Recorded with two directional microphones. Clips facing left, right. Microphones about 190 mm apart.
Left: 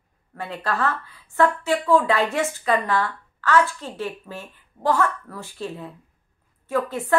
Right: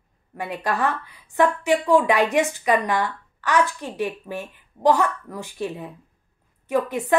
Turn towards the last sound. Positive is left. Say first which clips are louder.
# right 2 dB
turn(degrees=-15)  # may be behind; listen again after turning